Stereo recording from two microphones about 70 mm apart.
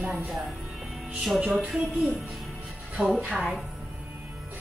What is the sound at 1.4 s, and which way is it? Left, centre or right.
Music, centre.